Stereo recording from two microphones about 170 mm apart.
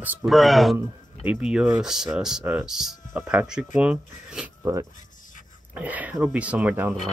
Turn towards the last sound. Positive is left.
turn(degrees=-10)  # may be behind; listen again after turning